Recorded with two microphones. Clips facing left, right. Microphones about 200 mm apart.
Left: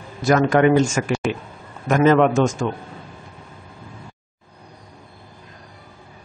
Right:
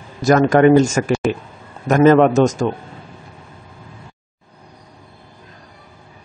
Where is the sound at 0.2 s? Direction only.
40° right (ahead or behind).